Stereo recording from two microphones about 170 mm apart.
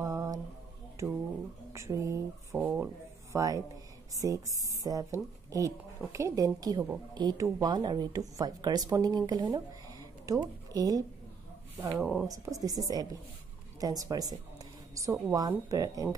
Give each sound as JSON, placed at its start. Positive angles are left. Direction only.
{"t": 0.0, "sound": "mantra", "side_deg": -20}
{"t": 1.0, "sound": "speech", "side_deg": -15}
{"t": 2.5, "sound": "speech", "side_deg": -10}
{"t": 3.3, "sound": "a woman's voice", "side_deg": -20}
{"t": 12.0, "sound": "speech", "side_deg": -5}
{"t": 12.3, "sound": "speech", "side_deg": -20}